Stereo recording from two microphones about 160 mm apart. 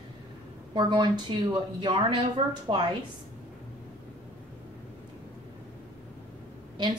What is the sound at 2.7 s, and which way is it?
Speech, 30° right (ahead or behind).